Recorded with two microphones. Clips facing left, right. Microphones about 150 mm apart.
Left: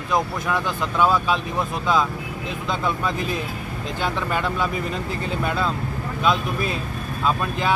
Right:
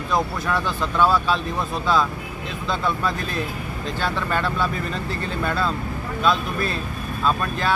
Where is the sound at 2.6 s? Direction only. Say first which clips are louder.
Right 1 dB; 15° left (ahead or behind).